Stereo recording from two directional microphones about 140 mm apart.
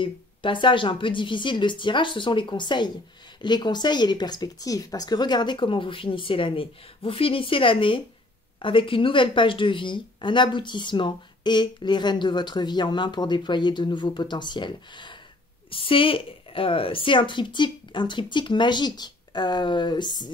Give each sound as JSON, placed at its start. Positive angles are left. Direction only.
{"t": 0.0, "sound": "speech", "side_deg": 35}